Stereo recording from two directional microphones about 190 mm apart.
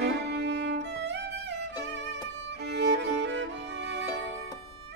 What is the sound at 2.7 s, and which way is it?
Music, 65° right (ahead or behind).